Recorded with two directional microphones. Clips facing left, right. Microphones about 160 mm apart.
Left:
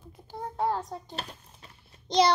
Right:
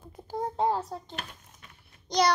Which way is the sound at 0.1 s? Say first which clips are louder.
Right 6 dB; 45° right (ahead or behind).